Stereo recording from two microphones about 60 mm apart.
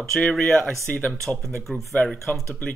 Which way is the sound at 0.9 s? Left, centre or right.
Left.